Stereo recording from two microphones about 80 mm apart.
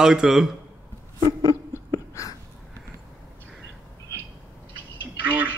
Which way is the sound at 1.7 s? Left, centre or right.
Left.